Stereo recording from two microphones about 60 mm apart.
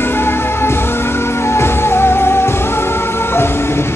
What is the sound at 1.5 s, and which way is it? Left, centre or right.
Music, left.